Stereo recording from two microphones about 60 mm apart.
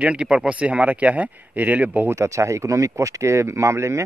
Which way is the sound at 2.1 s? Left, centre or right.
Right.